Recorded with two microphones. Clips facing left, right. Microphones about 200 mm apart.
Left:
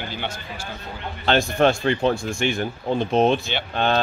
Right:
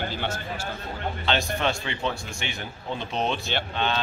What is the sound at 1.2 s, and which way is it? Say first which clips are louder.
Speech: left 8 dB; 50° left (ahead or behind).